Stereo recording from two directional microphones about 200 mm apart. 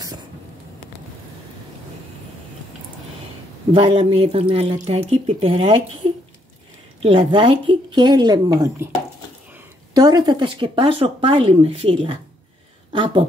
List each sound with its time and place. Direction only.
3.7 s speech: 25° right (ahead or behind)
7.0 s speech: 25° right (ahead or behind)
9.9 s speech: 20° right (ahead or behind)